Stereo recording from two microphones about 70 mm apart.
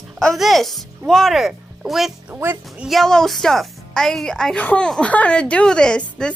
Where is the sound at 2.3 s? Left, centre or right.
Right.